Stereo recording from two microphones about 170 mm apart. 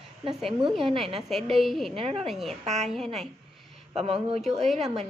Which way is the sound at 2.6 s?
40° right (ahead or behind).